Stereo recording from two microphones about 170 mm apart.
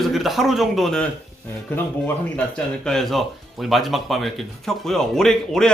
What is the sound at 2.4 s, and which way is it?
Speech, 5° left (ahead or behind).